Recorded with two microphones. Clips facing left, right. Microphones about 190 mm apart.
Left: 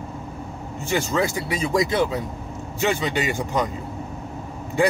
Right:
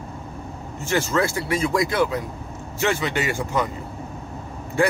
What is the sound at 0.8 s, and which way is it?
Speech, 15° left (ahead or behind).